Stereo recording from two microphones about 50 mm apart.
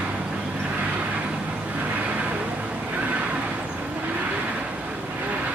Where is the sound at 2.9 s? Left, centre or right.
Right.